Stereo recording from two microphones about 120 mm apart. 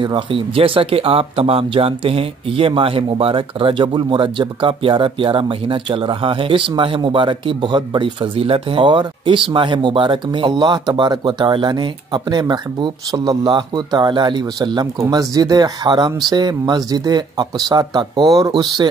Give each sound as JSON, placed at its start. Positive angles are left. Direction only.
{"t": 0.0, "sound": "speech", "side_deg": -45}